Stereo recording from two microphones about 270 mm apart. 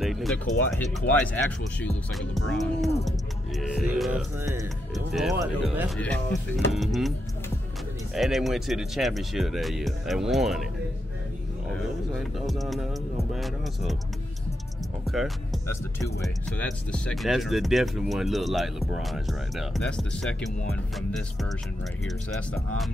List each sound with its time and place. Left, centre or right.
0.0 s speech: centre
12.1 s music: centre
15.0 s speech: centre